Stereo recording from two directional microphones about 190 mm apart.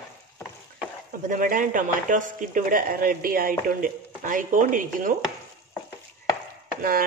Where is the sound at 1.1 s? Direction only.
45° right (ahead or behind).